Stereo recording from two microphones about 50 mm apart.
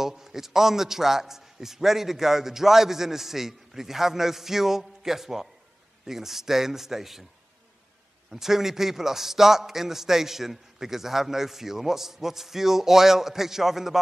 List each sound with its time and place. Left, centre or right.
0.0 s a man's voice: centre
8.3 s a man's voice: centre